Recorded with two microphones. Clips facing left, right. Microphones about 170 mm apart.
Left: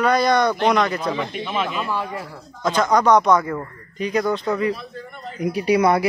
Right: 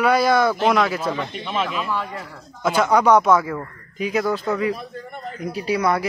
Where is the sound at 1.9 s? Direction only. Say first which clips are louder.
Left 1 dB; 10° left (ahead or behind).